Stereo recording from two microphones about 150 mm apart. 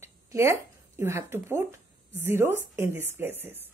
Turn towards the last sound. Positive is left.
turn(degrees=-15)  # may be behind; listen again after turning